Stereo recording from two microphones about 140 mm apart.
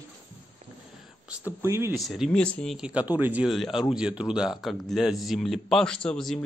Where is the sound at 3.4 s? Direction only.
Centre (ahead or behind).